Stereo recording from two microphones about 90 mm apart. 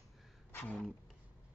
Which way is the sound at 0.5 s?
20° left (ahead or behind).